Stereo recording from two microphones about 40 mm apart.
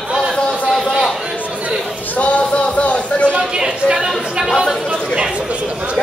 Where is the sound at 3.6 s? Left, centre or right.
Centre.